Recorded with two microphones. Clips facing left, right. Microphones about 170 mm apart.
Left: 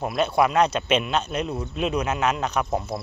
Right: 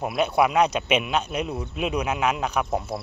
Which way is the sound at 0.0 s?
10° right (ahead or behind).